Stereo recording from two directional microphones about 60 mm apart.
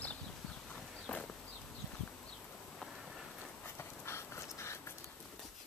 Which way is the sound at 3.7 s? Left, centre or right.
Left.